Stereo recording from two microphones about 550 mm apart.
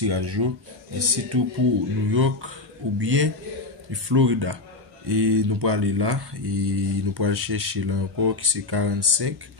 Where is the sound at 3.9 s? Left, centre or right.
Right.